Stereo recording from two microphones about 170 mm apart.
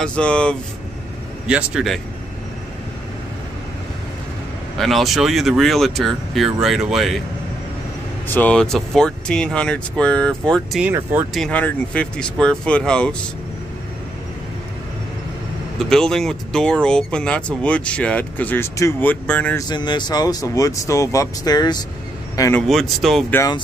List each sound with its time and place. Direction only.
0.0 s speech: 5° left (ahead or behind)
1.5 s speech: 5° right (ahead or behind)
4.7 s speech: centre (ahead or behind)
8.3 s speech: 10° left (ahead or behind)
10.9 s speech: 10° right (ahead or behind)
11.3 s speech: 5° left (ahead or behind)
15.8 s speech: 5° left (ahead or behind)
19.7 s speech: 25° left (ahead or behind)
22.6 s speech: centre (ahead or behind)